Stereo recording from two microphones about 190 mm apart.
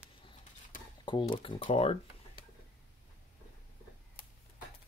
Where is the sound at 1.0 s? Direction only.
25° left (ahead or behind).